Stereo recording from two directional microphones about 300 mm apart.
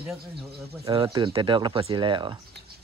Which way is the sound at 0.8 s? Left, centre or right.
Centre.